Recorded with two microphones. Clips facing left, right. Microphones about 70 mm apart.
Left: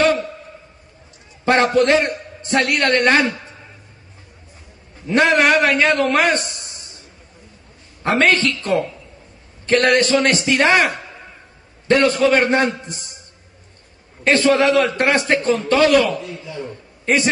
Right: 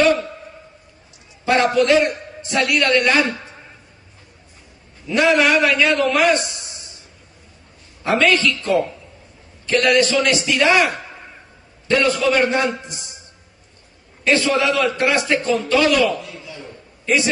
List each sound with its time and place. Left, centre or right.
1.9 s a man's voice: left
5.0 s a man's voice: left
8.0 s a man's voice: left
11.9 s a man's voice: left
14.2 s a man's voice: left